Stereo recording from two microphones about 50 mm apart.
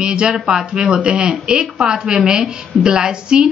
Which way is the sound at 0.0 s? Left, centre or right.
Centre.